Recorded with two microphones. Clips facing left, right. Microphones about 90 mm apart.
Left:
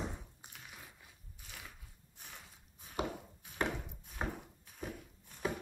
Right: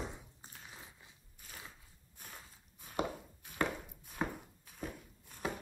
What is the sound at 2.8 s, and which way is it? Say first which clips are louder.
Chopping: right 1 dB; 55° right (ahead or behind).